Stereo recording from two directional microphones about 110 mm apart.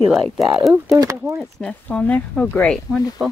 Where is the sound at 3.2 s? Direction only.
5° right (ahead or behind).